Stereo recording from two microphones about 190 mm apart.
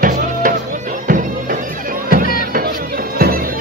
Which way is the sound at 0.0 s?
45° right (ahead or behind).